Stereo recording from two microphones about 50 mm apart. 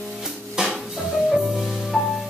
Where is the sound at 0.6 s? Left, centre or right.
Centre.